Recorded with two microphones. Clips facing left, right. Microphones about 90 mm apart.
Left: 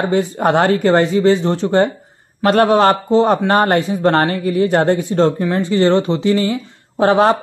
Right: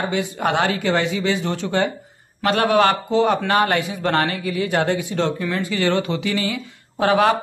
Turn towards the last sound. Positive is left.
turn(degrees=35)  # may be behind; listen again after turning